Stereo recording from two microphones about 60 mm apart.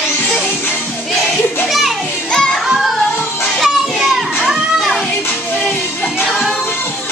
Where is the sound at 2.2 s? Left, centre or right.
Centre.